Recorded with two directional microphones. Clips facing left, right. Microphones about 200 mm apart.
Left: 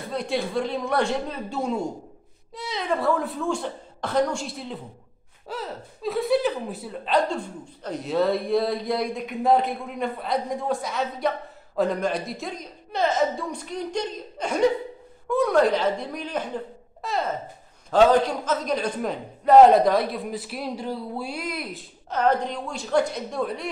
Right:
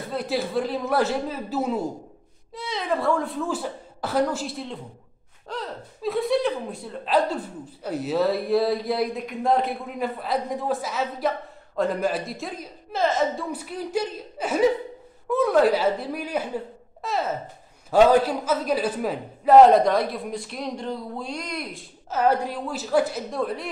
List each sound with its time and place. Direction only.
0.1 s speech: 5° right (ahead or behind)